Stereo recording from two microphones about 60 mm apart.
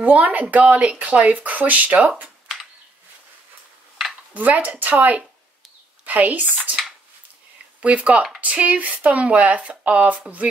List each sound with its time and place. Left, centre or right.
0.0 s speech: right
4.3 s speech: right
7.8 s speech: right